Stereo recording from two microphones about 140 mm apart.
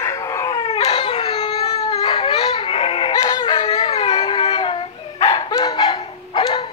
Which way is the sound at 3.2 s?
25° left (ahead or behind).